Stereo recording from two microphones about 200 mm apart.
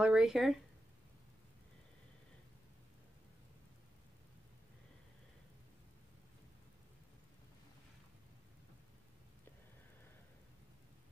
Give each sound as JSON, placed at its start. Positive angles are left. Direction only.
{"t": 0.0, "sound": "speech", "side_deg": -5}